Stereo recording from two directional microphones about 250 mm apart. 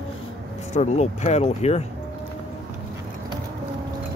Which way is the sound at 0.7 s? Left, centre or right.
Left.